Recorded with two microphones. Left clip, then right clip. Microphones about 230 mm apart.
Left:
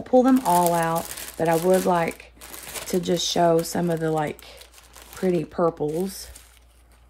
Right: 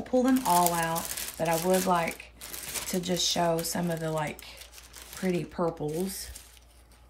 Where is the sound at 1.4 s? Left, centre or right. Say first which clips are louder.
Left 7 dB; left.